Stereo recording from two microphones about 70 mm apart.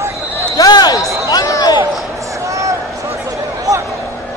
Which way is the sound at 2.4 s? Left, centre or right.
Right.